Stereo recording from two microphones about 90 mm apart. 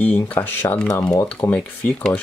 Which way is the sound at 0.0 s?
15° left (ahead or behind).